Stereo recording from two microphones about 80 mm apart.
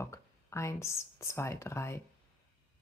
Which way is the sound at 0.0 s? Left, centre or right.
Left.